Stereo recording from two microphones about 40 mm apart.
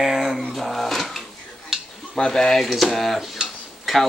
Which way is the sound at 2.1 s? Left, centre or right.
Centre.